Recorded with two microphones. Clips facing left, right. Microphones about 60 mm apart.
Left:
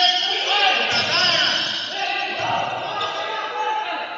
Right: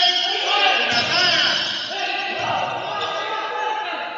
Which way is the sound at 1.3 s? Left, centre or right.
Centre.